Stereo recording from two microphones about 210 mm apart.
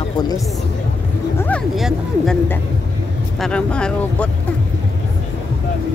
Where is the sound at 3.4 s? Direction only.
5° left (ahead or behind).